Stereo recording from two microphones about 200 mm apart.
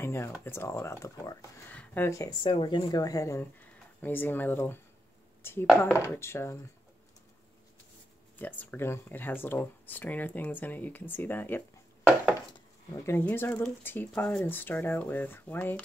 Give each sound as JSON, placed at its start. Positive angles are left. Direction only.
{"t": 0.0, "sound": "speech", "side_deg": 10}
{"t": 8.4, "sound": "speech", "side_deg": 10}
{"t": 12.9, "sound": "speech", "side_deg": 15}